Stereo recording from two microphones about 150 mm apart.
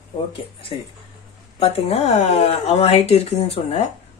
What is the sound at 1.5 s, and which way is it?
Speech, 40° left (ahead or behind).